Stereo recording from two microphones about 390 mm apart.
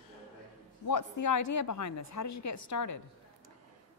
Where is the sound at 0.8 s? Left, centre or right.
Left.